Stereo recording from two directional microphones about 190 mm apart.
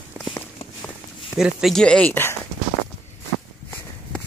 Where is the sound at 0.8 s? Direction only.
25° left (ahead or behind).